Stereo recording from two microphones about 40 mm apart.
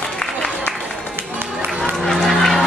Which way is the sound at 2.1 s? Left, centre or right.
Centre.